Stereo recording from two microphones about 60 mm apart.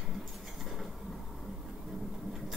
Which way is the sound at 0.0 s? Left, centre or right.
Centre.